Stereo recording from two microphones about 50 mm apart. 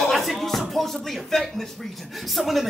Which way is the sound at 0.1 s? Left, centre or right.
Centre.